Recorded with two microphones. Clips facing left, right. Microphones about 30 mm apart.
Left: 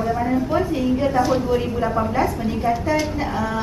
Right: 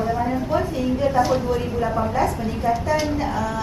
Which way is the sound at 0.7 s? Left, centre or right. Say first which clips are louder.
Right 1 dB; centre.